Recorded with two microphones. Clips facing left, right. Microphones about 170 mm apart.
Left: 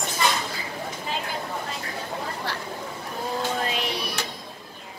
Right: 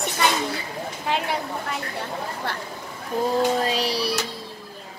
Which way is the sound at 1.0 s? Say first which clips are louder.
Right 8 dB; 70° right (ahead or behind).